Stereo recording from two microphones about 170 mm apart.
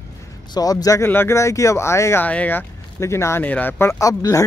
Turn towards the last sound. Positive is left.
turn(degrees=20)  # may be behind; listen again after turning